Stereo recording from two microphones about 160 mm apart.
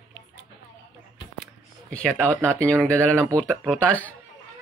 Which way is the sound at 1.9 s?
10° left (ahead or behind).